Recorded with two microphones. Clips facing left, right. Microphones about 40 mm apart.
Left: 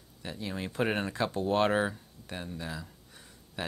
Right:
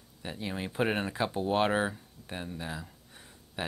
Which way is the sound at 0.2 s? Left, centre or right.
Centre.